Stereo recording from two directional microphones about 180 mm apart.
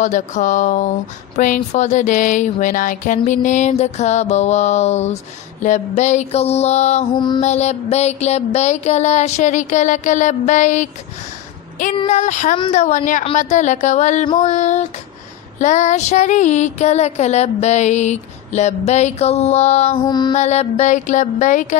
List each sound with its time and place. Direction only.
0.0 s speech: 45° left (ahead or behind)
3.3 s music: 40° left (ahead or behind)
7.2 s mantra: 25° left (ahead or behind)
7.4 s music: 40° left (ahead or behind)
12.1 s speech: 40° left (ahead or behind)
13.2 s music: 35° left (ahead or behind)
20.1 s mantra: 25° left (ahead or behind)
20.3 s music: 35° left (ahead or behind)